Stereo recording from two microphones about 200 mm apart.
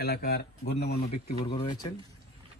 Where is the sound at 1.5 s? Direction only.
25° left (ahead or behind).